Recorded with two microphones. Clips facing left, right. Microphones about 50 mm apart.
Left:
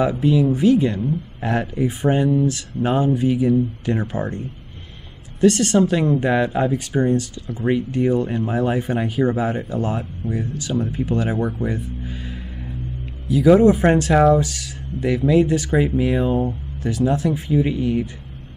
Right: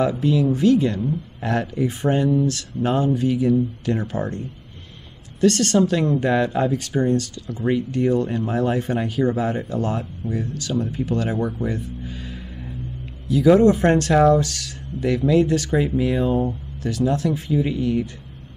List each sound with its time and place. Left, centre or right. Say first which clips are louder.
0.2 s speech: left 2 dB; centre
2.2 s speech: left 1 dB; left
5.4 s speech: left 2 dB; centre
11.6 s music: left 1 dB; centre
13.3 s speech: left 1 dB; centre; by 16.5 s left
16.8 s speech: left 1 dB; centre